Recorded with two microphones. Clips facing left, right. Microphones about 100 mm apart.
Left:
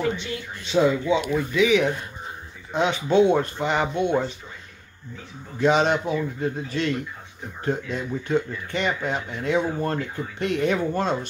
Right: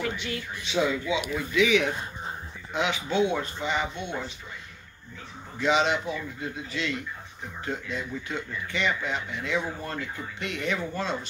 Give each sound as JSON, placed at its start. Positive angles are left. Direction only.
{"t": 0.0, "sound": "a sound", "side_deg": 25}
{"t": 0.8, "sound": "speech", "side_deg": 30}
{"t": 2.7, "sound": "speech", "side_deg": 40}
{"t": 3.3, "sound": "speech", "side_deg": 50}
{"t": 5.6, "sound": "speech", "side_deg": 45}